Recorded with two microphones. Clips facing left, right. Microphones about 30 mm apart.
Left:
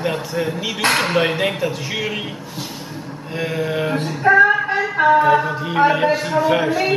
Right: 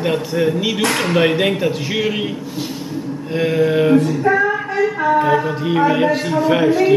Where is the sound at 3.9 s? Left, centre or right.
Left.